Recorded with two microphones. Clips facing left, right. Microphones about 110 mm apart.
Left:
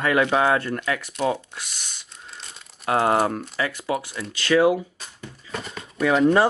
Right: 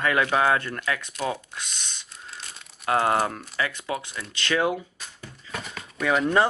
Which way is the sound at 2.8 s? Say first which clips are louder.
Left 2 dB; 30° left (ahead or behind).